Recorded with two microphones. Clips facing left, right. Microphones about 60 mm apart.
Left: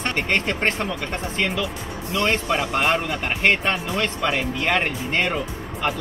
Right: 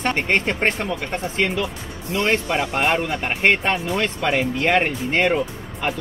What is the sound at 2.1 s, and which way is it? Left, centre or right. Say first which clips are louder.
Speech: right 1 dB; right.